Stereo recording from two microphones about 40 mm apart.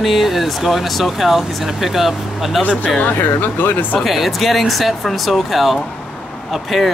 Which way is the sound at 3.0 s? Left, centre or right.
Left.